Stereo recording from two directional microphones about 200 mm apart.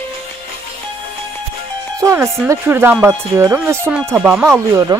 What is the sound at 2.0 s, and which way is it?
Speech, 15° right (ahead or behind).